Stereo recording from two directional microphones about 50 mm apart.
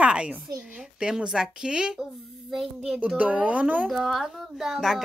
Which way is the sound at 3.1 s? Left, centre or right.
Right.